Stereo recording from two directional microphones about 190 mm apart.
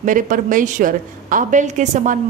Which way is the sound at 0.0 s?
45° right (ahead or behind).